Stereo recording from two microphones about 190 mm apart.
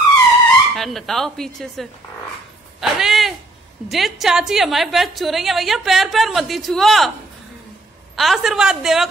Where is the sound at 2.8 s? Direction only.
Centre (ahead or behind).